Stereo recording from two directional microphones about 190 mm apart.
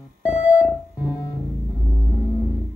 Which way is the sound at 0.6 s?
15° left (ahead or behind).